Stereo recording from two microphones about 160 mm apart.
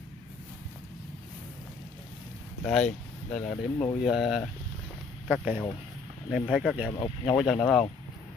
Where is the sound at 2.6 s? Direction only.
5° left (ahead or behind).